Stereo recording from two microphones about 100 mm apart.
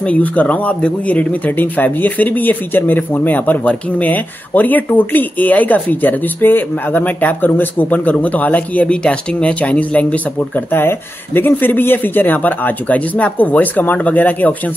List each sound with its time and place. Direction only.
0.0 s a man's voice: 15° left (ahead or behind)